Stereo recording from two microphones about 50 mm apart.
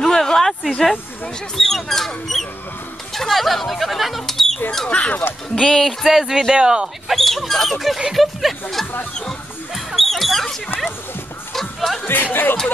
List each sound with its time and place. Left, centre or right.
0.0 s a sound: centre
1.6 s speech: centre
4.8 s speech: left
5.6 s speech: centre
6.0 s speech: centre
7.1 s speech: centre
9.8 s mouse: centre
12.1 s speech: left